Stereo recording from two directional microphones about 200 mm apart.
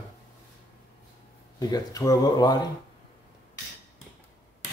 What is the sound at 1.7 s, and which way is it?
Speech, 15° left (ahead or behind).